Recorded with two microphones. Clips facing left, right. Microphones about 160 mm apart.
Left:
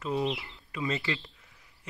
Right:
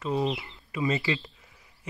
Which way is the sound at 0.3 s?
5° right (ahead or behind).